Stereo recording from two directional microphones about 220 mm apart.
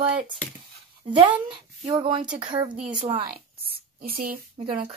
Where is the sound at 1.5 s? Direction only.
25° right (ahead or behind).